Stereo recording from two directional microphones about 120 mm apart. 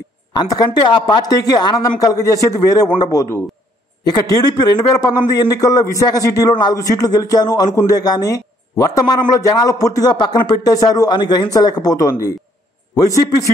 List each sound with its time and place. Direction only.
0.3 s a man's voice: 30° left (ahead or behind)